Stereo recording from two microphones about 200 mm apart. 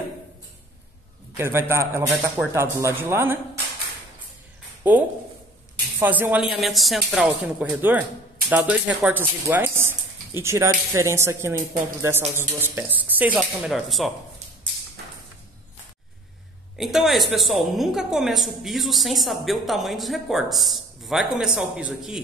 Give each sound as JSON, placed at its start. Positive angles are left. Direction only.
{"t": 1.3, "sound": "speech", "side_deg": -10}
{"t": 4.8, "sound": "a woman's voice", "side_deg": -10}
{"t": 16.7, "sound": "a woman's voice", "side_deg": 0}